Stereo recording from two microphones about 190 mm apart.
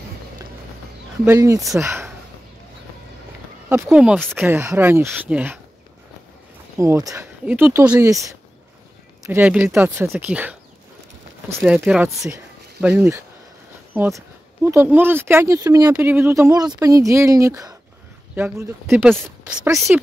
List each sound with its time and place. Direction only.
1.2 s speech: 15° right (ahead or behind)
3.6 s speech: 10° right (ahead or behind)
4.4 s speech: 10° right (ahead or behind)
6.8 s speech: 15° right (ahead or behind)
11.6 s speech: 5° right (ahead or behind)